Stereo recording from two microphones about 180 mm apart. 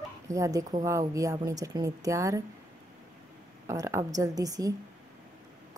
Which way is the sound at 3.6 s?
15° right (ahead or behind).